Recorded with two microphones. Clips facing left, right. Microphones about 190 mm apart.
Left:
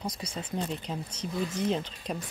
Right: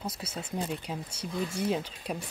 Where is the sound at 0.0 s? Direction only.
5° right (ahead or behind).